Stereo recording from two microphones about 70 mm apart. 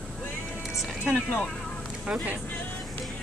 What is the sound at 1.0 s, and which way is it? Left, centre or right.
Speech, left.